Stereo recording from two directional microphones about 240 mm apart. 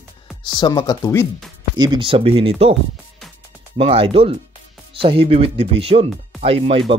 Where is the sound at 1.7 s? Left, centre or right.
Centre.